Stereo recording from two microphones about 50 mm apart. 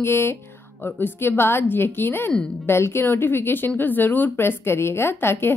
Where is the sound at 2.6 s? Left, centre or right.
Left.